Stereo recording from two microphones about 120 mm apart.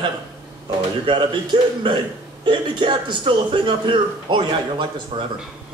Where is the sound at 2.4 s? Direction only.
40° right (ahead or behind).